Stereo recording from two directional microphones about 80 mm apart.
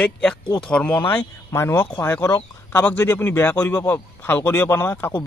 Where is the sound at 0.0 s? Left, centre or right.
Centre.